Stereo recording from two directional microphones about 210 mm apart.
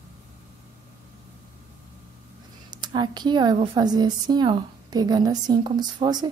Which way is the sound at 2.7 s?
20° right (ahead or behind).